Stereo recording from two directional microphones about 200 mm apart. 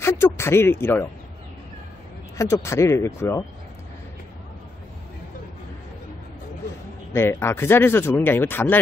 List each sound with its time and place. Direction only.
0.0 s speech: 10° left (ahead or behind)
2.3 s speech: 15° left (ahead or behind)
7.2 s speech: 10° left (ahead or behind)